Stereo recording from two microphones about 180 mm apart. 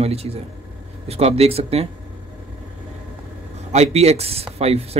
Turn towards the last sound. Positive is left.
turn(degrees=-35)  # may be behind; listen again after turning